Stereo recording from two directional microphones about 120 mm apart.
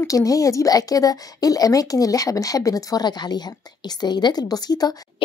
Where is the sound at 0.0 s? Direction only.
30° left (ahead or behind).